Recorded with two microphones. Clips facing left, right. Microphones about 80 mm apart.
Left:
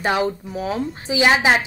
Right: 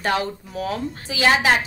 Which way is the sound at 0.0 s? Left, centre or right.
Centre.